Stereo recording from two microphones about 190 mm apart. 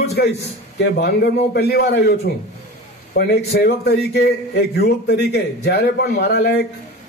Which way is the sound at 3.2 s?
55° left (ahead or behind).